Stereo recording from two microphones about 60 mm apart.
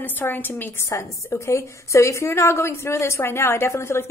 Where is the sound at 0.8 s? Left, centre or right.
Left.